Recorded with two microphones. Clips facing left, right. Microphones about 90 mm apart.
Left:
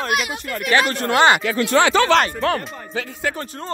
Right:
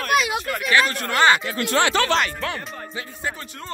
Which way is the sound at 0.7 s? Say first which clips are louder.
Left 3 dB; 30° left (ahead or behind).